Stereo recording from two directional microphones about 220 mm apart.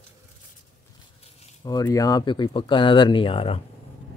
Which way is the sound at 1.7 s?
15° left (ahead or behind).